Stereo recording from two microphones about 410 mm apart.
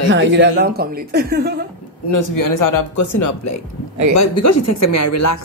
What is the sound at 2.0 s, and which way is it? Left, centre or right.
A woman's voice, left.